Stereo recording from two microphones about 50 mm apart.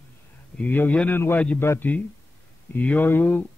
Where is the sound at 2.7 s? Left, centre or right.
Left.